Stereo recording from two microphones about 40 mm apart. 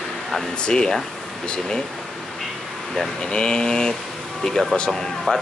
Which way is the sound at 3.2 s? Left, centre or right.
Centre.